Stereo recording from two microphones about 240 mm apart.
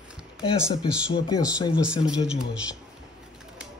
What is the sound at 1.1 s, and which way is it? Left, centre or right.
Speech, centre.